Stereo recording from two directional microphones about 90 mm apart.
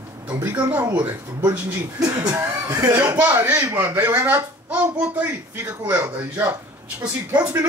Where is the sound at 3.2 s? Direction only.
20° right (ahead or behind).